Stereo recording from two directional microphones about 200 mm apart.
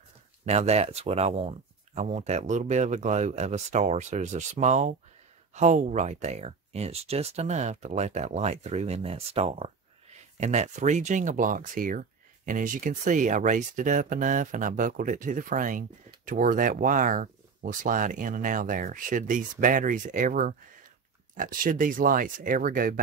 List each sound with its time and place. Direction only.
0.5 s speech: 35° right (ahead or behind)